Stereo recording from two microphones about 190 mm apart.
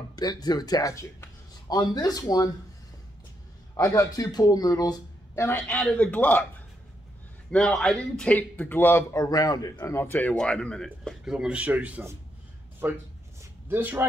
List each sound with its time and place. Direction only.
0.1 s speech: 20° left (ahead or behind)
3.7 s speech: 15° left (ahead or behind)
7.5 s a man's voice: 5° left (ahead or behind)
13.4 s a sound: 10° right (ahead or behind)